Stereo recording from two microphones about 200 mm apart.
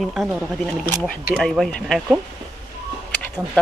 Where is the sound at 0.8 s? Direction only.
5° left (ahead or behind).